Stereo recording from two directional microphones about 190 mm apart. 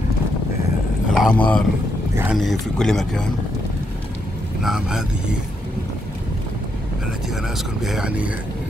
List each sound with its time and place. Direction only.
1.1 s speech: 5° left (ahead or behind)
4.6 s speech: 5° right (ahead or behind)
7.8 s speech: 5° right (ahead or behind)